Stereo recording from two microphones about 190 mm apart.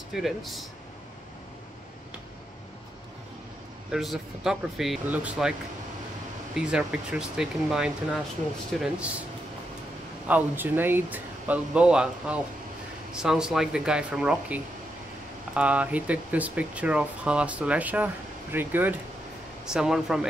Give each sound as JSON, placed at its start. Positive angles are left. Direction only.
{"t": 0.2, "sound": "speech", "side_deg": 0}
{"t": 3.9, "sound": "speech", "side_deg": 0}
{"t": 6.5, "sound": "speech", "side_deg": -5}
{"t": 10.2, "sound": "speech", "side_deg": -10}